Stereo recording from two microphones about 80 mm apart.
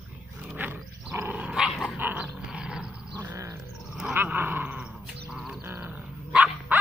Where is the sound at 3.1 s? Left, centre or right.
Right.